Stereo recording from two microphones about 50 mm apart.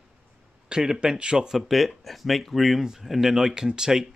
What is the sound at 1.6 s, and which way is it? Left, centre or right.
Speech, centre.